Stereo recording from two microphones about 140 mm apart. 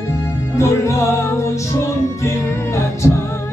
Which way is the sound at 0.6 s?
20° left (ahead or behind).